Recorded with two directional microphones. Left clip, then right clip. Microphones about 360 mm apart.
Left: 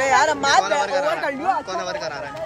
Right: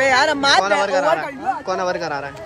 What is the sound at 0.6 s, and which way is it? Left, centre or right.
Speech, centre.